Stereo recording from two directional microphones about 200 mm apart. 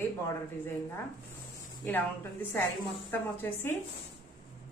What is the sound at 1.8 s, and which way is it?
A woman's voice, 10° left (ahead or behind).